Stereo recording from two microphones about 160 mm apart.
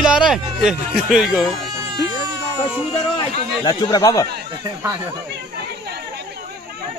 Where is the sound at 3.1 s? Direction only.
30° left (ahead or behind).